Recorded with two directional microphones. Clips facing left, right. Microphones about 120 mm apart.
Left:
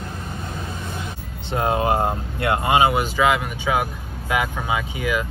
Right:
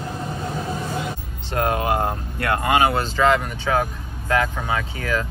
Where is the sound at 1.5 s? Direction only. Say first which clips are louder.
Left 1 dB; 20° left (ahead or behind).